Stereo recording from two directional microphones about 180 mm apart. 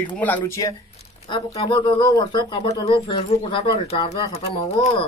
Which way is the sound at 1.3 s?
25° left (ahead or behind).